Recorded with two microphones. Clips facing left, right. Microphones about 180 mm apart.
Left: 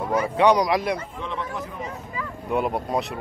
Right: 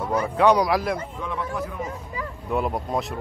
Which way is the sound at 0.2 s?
Centre (ahead or behind).